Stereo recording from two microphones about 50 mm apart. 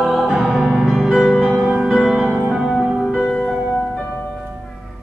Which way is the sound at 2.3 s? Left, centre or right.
Centre.